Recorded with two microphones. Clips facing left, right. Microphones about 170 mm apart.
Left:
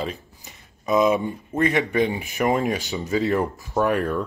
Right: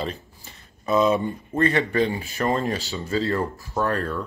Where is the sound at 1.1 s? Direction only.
Centre (ahead or behind).